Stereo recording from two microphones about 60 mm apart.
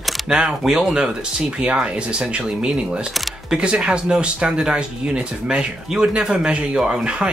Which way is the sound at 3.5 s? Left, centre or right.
Centre.